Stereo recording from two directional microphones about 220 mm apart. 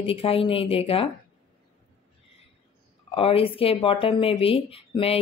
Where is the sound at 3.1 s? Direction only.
25° left (ahead or behind).